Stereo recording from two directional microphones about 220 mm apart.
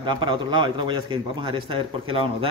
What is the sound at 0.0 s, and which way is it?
A man's voice, 20° right (ahead or behind).